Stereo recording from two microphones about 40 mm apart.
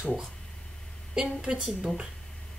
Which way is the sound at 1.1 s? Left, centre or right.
Centre.